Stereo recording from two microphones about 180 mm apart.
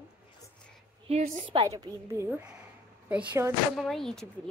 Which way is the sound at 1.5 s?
25° right (ahead or behind).